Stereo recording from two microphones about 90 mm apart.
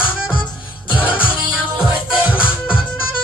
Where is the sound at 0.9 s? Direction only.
15° right (ahead or behind).